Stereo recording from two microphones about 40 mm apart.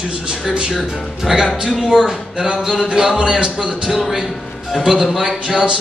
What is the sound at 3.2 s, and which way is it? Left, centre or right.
Speech, right.